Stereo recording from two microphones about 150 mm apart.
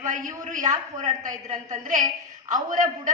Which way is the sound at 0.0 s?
55° right (ahead or behind).